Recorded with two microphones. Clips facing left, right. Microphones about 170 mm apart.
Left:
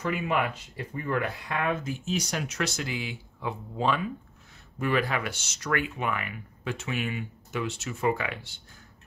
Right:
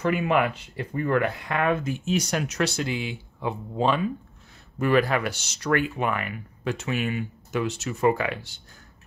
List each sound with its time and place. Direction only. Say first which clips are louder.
0.0 s speech: right 5 dB; 65° right (ahead or behind)
2.4 s speech: right 5 dB; 35° right (ahead or behind)
4.7 s speech: right 6 dB; 45° right (ahead or behind)